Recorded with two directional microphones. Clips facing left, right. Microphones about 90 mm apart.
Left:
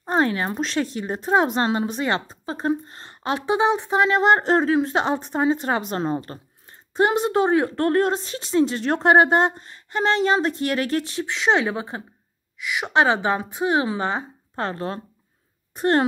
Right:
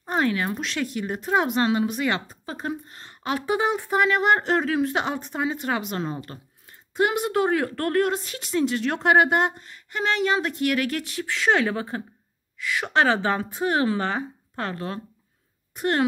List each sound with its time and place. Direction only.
0.0 s a woman's voice: 35° left (ahead or behind)
14.5 s speech: 30° left (ahead or behind)